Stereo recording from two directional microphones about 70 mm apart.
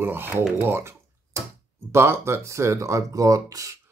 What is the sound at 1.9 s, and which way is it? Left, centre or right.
Speech, right.